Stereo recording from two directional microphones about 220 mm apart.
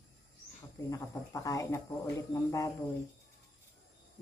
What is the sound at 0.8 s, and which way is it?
Speech, 15° left (ahead or behind).